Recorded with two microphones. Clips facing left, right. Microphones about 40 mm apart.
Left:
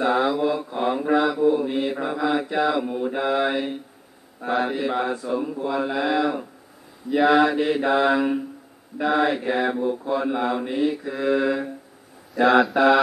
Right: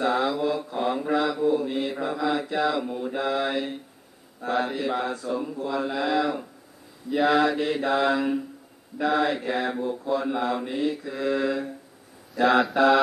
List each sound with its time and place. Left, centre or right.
0.0 s mantra: centre
7.1 s speech: centre
7.3 s mantra: centre
12.4 s speech: centre